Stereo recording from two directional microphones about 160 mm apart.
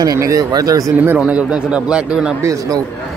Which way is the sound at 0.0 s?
20° right (ahead or behind).